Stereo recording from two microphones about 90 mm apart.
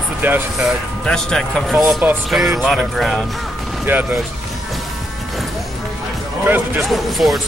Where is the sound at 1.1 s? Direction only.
5° left (ahead or behind).